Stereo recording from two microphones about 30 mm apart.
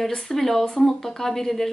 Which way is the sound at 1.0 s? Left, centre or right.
Centre.